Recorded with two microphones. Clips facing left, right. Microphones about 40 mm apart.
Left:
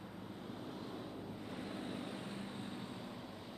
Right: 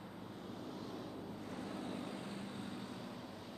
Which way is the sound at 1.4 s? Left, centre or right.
Left.